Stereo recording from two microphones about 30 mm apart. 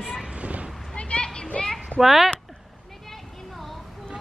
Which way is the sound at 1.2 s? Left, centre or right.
Left.